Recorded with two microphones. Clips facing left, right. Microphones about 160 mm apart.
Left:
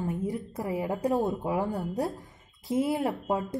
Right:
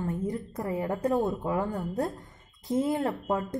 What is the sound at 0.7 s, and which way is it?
A woman's voice, 15° left (ahead or behind).